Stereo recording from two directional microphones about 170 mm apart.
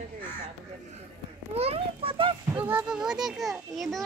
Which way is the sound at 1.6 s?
35° right (ahead or behind).